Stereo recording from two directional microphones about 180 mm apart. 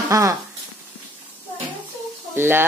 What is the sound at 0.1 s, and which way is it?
Speech, 20° right (ahead or behind).